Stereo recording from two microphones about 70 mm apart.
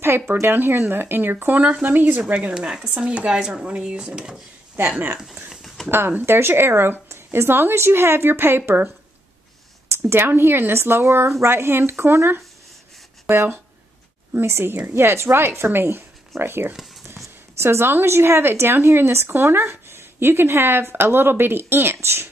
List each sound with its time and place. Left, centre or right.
0.0 s a woman's voice: right
2.5 s speech: centre
4.7 s speech: right
5.2 s a sound: centre
5.9 s a woman's voice: right
14.3 s a woman's voice: right